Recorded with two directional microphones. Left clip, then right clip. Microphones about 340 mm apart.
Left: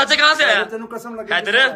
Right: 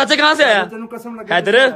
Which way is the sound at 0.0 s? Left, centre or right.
Centre.